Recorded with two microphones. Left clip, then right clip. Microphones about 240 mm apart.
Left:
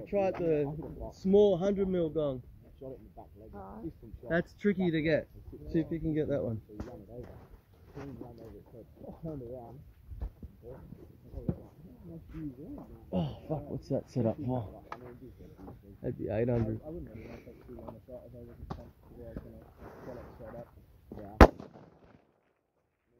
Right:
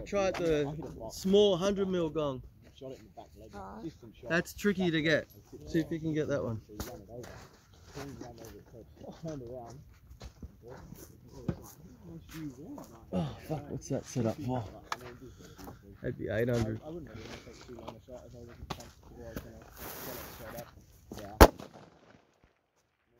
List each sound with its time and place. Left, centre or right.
0.0 s speech: right
3.5 s speech: centre
4.3 s speech: right
9.0 s speech: right
12.3 s speech: centre
13.1 s speech: centre
14.9 s a sound: right
16.0 s speech: centre
17.3 s speech: right
19.3 s a sound: right